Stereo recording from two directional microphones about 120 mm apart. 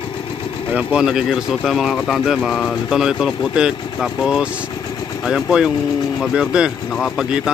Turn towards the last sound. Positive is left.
turn(degrees=0)  # may be behind; listen again after turning